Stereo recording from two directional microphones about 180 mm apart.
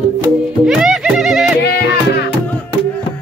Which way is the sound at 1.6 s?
70° left (ahead or behind).